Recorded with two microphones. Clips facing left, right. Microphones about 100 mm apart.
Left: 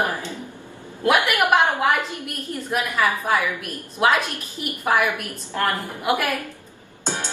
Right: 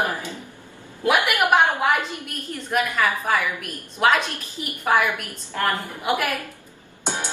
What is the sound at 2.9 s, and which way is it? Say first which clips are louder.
Speech: left 1 dB; 15° left (ahead or behind).